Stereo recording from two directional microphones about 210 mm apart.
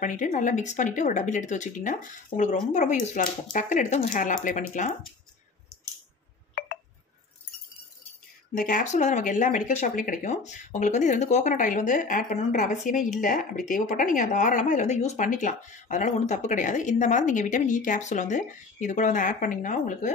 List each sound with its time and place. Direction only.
0.0 s a woman's voice: 35° left (ahead or behind)
8.5 s a woman's voice: 40° left (ahead or behind)